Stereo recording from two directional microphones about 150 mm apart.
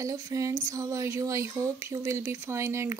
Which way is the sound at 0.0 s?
20° right (ahead or behind).